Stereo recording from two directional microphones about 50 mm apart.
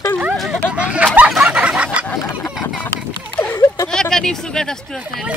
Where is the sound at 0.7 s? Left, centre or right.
Right.